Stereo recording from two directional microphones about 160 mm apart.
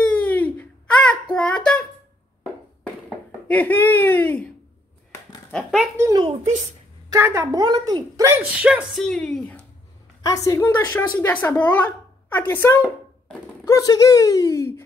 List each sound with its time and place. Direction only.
0.0 s a sound: 5° left (ahead or behind)
1.3 s child singing: 5° left (ahead or behind)
3.4 s speech: 10° left (ahead or behind)
5.5 s a sound: 5° left (ahead or behind)
5.9 s a woman's voice: 20° right (ahead or behind); by 9.6 s 10° left (ahead or behind)
10.2 s a woman's voice: 20° left (ahead or behind)